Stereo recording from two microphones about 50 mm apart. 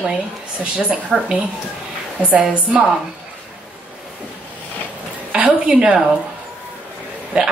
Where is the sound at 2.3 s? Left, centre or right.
Right.